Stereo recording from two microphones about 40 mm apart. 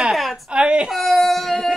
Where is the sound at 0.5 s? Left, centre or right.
Right.